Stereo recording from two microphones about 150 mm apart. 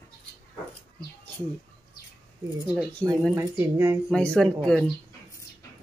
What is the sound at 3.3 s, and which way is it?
Speech, 15° right (ahead or behind).